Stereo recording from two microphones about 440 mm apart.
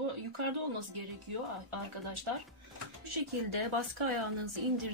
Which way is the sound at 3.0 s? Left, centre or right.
Right.